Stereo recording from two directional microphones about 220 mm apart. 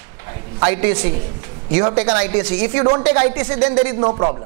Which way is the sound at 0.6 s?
15° right (ahead or behind).